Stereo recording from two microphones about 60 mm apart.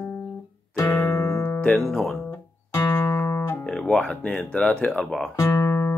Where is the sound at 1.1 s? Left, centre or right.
Left.